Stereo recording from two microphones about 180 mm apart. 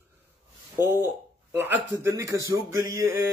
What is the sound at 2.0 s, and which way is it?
A man's voice, 15° right (ahead or behind).